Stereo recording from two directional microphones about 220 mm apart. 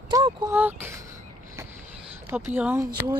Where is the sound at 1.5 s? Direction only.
10° right (ahead or behind).